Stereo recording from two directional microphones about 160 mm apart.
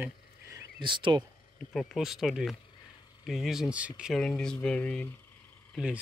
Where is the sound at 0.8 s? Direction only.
30° right (ahead or behind).